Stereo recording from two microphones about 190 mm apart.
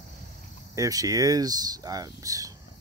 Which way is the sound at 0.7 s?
20° right (ahead or behind).